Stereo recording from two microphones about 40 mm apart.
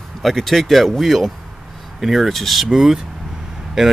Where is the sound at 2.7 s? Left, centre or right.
Centre.